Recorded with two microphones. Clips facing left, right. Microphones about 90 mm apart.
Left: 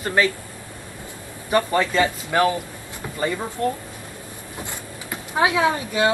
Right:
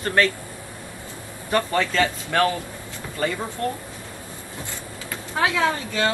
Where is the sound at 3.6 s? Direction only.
20° left (ahead or behind).